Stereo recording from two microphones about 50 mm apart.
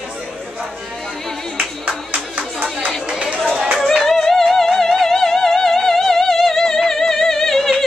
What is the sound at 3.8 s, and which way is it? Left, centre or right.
Music, centre.